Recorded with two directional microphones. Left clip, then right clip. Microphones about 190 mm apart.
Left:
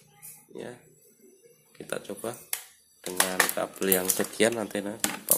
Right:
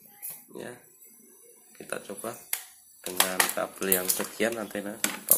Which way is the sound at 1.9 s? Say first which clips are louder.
Left 2 dB; 20° left (ahead or behind).